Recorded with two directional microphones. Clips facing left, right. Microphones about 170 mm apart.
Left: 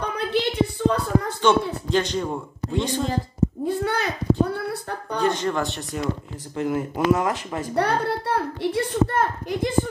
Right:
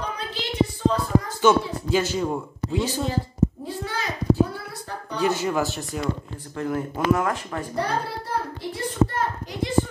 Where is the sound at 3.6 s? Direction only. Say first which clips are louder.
Left 6 dB; 60° left (ahead or behind).